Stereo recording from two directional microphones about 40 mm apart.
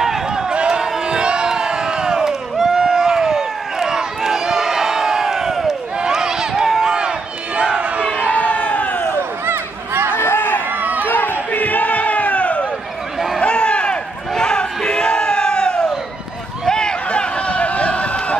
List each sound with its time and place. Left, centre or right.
0.0 s run: centre
0.5 s crowd: right
5.9 s a sound: centre
8.3 s crowd: left
10.1 s a sound: left
10.8 s crowd: right
11.1 s crowd: left
13.4 s run: left
14.3 s crowd: left
16.6 s a sound: centre